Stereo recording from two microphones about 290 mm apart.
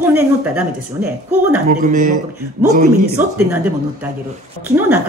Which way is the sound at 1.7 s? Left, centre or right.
Right.